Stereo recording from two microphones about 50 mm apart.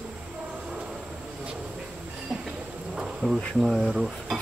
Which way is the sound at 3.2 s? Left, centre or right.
Left.